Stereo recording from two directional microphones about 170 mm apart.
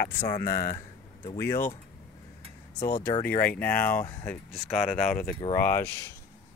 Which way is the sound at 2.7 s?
60° left (ahead or behind).